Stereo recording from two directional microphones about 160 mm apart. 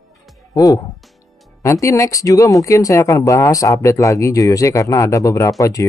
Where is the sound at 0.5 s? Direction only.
20° left (ahead or behind).